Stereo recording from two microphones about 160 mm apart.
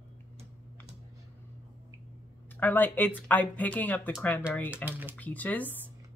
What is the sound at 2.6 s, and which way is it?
Speech, 10° left (ahead or behind).